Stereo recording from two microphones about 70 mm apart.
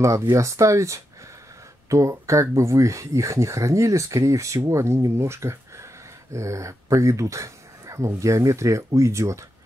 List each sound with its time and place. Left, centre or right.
0.0 s speech: right